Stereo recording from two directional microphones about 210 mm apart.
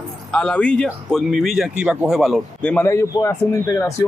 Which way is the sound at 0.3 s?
5° left (ahead or behind).